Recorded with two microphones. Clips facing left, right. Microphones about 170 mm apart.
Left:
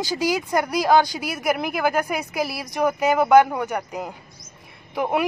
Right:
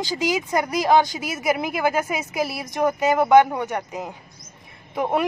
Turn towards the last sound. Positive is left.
turn(degrees=5)  # may be behind; listen again after turning